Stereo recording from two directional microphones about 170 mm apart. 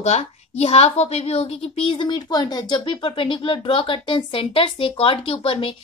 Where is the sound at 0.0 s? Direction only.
40° left (ahead or behind).